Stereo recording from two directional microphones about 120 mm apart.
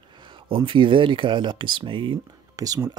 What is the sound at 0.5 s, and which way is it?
Speech, 45° right (ahead or behind).